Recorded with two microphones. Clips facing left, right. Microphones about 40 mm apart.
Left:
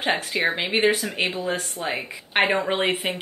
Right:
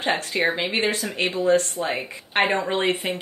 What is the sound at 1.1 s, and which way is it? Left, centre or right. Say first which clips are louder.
Speech: right 5 dB; centre.